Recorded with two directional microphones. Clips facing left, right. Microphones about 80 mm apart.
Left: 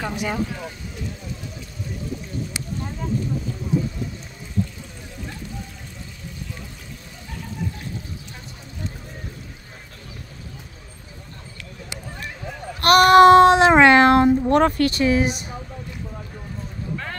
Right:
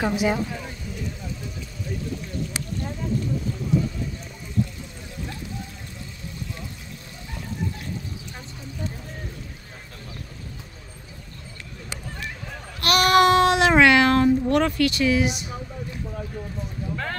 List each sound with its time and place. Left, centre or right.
0.0 s speech: centre
12.8 s a sound: left
14.5 s speech: left